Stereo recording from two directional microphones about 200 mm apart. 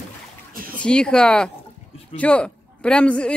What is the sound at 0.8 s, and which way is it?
Speech, 5° left (ahead or behind).